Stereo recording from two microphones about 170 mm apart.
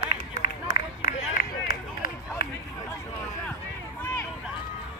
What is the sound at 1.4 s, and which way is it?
Run, 55° left (ahead or behind).